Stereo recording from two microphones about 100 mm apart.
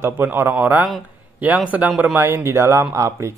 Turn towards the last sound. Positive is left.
turn(degrees=-30)  # may be behind; listen again after turning